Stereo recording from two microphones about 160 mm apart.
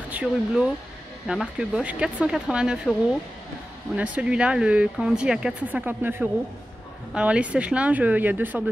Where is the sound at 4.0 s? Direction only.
10° right (ahead or behind).